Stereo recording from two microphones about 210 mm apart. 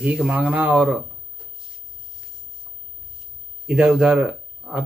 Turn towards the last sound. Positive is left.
turn(degrees=-5)  # may be behind; listen again after turning